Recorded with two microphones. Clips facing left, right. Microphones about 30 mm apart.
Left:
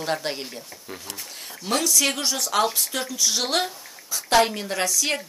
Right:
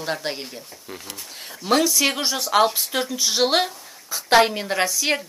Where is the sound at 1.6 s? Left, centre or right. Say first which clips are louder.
Right 4 dB; centre.